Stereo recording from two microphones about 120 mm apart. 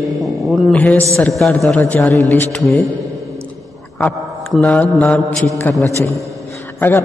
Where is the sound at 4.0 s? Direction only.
10° left (ahead or behind).